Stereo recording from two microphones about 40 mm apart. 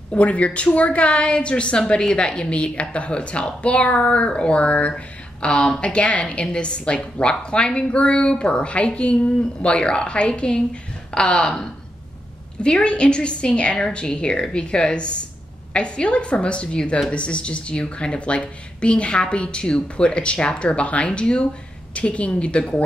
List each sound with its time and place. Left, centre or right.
0.1 s a woman's voice: left
12.6 s a woman's voice: left